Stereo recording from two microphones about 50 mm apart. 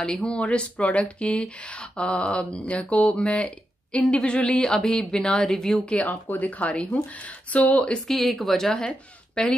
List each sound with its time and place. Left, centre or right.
0.2 s mantra: left
4.1 s a woman's voice: left
6.0 s speech: left
6.7 s mantra: centre
8.1 s a woman's voice: centre